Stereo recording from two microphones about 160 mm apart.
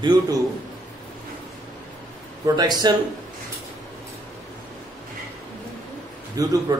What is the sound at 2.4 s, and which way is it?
Speech, 25° right (ahead or behind).